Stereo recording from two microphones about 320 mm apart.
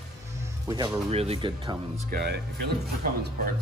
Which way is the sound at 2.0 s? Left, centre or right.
Right.